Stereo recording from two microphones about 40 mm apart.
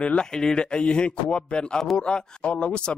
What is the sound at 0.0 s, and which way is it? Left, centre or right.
Speech, left.